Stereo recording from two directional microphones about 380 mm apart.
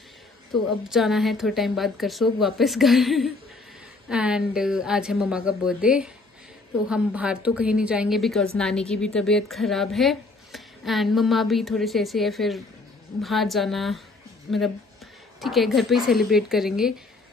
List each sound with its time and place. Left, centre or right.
0.5 s a woman's voice: centre
15.4 s a woman's voice: centre